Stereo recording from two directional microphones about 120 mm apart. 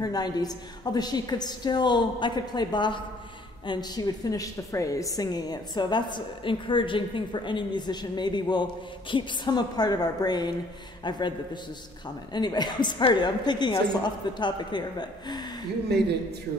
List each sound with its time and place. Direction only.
0.0 s a woman's voice: 35° left (ahead or behind)